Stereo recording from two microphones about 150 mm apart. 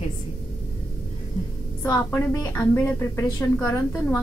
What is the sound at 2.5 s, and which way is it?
A woman's voice, 15° left (ahead or behind).